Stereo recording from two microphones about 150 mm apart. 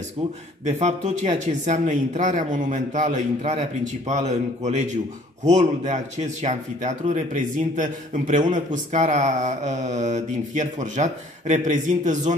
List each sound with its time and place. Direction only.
0.7 s speech: 50° right (ahead or behind)